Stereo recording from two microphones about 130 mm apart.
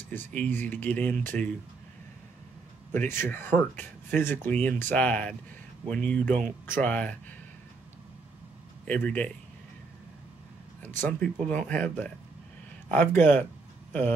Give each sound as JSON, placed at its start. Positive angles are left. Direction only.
{"t": 0.1, "sound": "speech", "side_deg": 15}
{"t": 2.9, "sound": "speech", "side_deg": 15}
{"t": 8.8, "sound": "speech", "side_deg": 10}
{"t": 10.8, "sound": "speech", "side_deg": 15}